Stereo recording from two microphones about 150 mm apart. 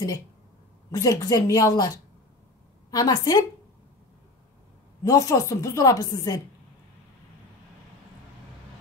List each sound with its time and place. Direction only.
0.9 s a woman's voice: 25° left (ahead or behind)
5.0 s a woman's voice: 25° left (ahead or behind)